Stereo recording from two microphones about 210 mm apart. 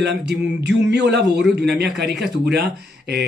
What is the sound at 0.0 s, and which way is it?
Speech, 50° right (ahead or behind).